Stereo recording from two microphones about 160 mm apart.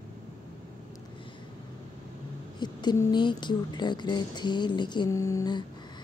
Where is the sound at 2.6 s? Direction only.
25° left (ahead or behind).